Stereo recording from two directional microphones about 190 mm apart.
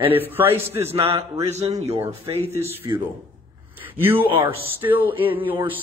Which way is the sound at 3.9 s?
10° right (ahead or behind).